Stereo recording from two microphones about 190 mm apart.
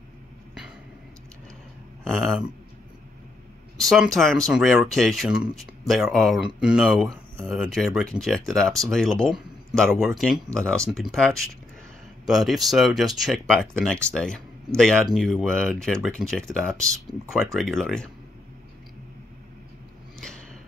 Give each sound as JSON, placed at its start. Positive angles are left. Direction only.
{"t": 2.0, "sound": "speech", "side_deg": 0}
{"t": 3.7, "sound": "speech", "side_deg": 0}
{"t": 20.2, "sound": "a sound", "side_deg": 5}